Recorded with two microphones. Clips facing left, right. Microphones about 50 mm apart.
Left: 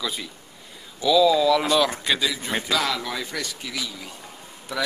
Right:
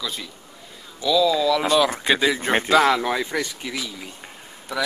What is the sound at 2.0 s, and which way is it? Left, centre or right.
Speech, right.